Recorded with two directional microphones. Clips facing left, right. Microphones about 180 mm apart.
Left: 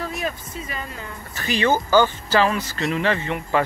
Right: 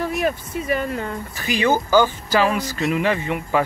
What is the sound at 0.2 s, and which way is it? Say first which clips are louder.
Speech: right 6 dB; 60° right (ahead or behind).